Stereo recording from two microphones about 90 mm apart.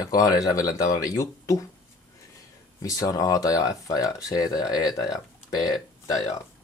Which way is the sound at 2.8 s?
40° left (ahead or behind).